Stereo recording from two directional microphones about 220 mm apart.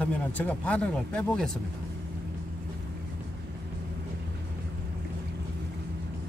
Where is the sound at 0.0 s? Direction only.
5° left (ahead or behind).